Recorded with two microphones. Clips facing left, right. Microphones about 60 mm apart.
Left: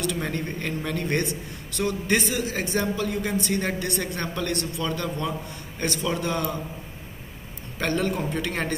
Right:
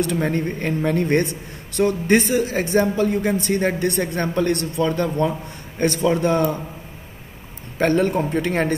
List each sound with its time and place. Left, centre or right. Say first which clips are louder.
0.0 s a man's voice: right 7 dB; right
7.8 s a man's voice: right 7 dB; right